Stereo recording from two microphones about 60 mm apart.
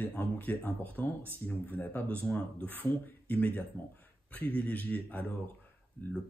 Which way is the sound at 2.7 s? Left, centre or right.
Left.